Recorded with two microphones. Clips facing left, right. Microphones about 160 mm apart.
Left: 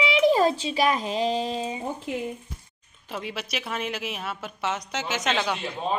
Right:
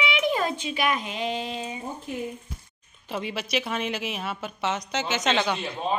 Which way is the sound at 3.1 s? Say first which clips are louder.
Right 4 dB; centre (ahead or behind).